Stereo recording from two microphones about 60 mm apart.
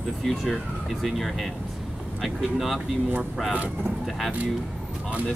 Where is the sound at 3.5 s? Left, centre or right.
Right.